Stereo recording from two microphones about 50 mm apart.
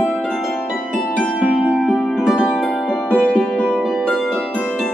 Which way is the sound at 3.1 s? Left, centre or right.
Left.